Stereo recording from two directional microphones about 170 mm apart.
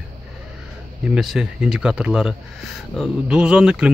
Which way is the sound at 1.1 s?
5° right (ahead or behind).